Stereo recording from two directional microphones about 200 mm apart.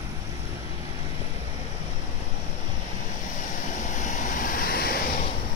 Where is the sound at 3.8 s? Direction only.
40° left (ahead or behind).